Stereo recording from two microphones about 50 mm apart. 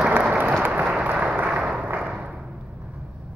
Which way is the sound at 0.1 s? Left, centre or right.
Right.